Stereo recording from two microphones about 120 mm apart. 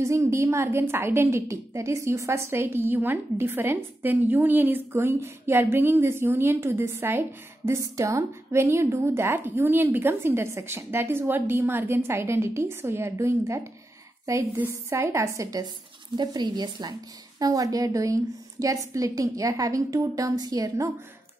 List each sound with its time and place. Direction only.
0.0 s a woman's voice: 25° right (ahead or behind)